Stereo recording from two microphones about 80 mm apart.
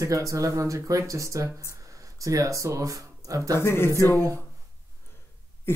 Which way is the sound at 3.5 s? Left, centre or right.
Left.